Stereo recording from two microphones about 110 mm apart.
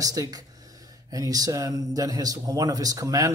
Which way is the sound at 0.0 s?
30° right (ahead or behind).